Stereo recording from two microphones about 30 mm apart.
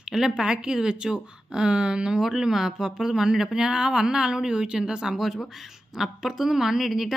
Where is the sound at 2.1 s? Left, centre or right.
Centre; by 5.0 s right.